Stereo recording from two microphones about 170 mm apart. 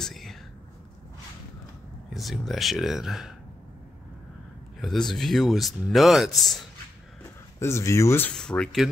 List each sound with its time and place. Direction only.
0.0 s whispering: centre (ahead or behind)
2.1 s speech: centre (ahead or behind)
4.7 s a man's voice: centre (ahead or behind)
7.5 s speech: 15° left (ahead or behind)
8.3 s speech: 5° left (ahead or behind)